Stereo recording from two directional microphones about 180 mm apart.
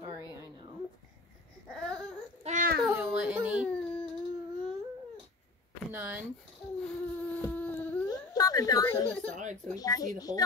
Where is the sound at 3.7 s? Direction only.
5° left (ahead or behind).